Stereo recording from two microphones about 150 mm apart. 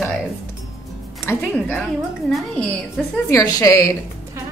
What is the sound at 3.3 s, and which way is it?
Speech, 25° left (ahead or behind).